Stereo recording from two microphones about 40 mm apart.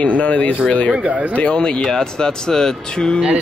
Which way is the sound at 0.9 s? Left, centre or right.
Right.